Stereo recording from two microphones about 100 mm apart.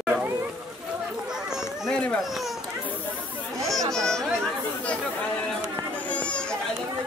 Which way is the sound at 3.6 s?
5° left (ahead or behind).